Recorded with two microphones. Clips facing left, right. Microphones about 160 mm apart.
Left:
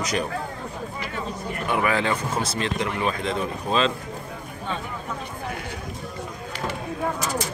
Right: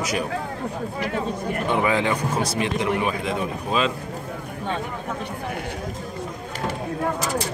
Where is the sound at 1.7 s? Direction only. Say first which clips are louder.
Right 1 dB; 20° right (ahead or behind).